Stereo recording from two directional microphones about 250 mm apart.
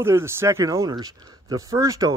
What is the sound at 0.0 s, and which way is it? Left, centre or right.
A man's voice, centre.